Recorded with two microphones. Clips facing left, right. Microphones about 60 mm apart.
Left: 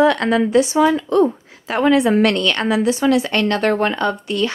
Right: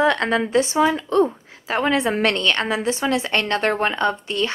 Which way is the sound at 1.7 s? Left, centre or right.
Right.